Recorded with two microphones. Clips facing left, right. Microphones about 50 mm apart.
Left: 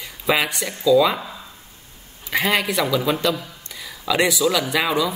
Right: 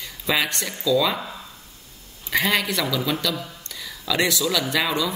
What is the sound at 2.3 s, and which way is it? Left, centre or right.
Speech, centre.